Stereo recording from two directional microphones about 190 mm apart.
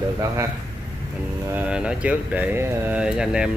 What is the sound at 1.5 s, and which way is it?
Speech, 5° right (ahead or behind).